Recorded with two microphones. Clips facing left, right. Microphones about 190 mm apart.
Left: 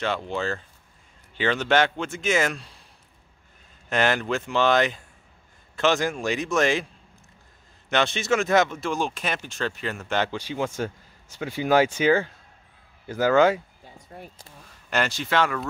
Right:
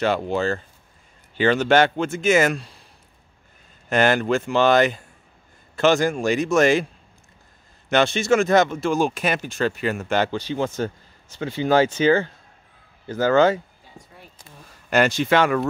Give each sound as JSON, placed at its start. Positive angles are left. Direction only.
{"t": 0.0, "sound": "speech", "side_deg": -40}
{"t": 1.3, "sound": "speech", "side_deg": 0}
{"t": 3.9, "sound": "speech", "side_deg": 0}
{"t": 7.9, "sound": "speech", "side_deg": 0}
{"t": 14.9, "sound": "a man's voice", "side_deg": -15}